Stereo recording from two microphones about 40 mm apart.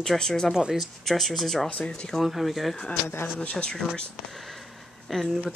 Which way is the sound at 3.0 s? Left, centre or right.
Left.